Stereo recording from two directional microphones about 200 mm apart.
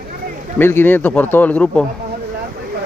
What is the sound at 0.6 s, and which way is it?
Speech, 10° left (ahead or behind).